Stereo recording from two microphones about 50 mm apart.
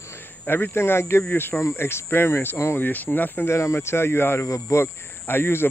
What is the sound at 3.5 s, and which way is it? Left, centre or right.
Speech, left.